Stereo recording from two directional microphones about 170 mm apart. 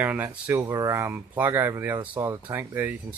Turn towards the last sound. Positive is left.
turn(degrees=-10)  # may be behind; listen again after turning